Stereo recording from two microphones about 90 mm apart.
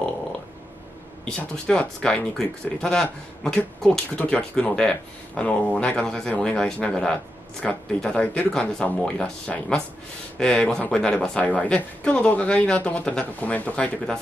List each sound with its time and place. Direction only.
1.2 s speech: 10° left (ahead or behind)